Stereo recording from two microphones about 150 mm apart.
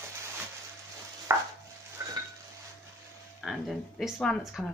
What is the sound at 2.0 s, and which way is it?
Stir, 15° right (ahead or behind).